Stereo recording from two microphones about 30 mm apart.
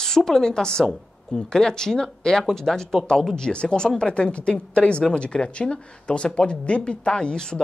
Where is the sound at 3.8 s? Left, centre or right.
Left.